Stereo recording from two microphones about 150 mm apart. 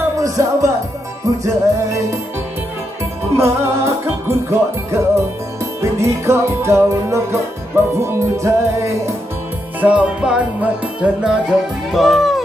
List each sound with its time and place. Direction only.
0.2 s music: 20° right (ahead or behind)
3.3 s music: 20° right (ahead or behind)
9.8 s music: 10° right (ahead or behind)